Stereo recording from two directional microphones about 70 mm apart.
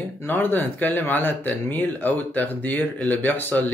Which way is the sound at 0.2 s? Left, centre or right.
Left.